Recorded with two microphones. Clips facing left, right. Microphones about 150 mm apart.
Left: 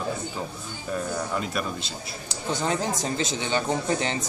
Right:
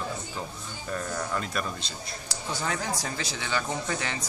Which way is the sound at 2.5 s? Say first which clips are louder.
Left 5 dB; 20° left (ahead or behind).